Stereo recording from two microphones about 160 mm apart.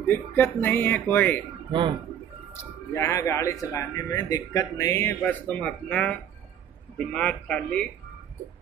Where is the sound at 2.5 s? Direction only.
15° left (ahead or behind).